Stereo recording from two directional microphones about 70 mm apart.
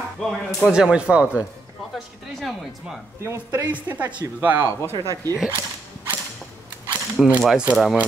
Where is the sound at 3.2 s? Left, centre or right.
Right.